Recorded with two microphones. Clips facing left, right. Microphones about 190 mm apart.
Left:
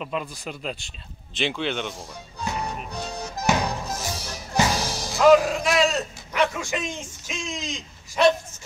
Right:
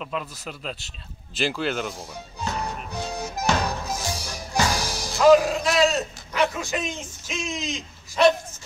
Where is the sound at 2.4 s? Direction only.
20° left (ahead or behind).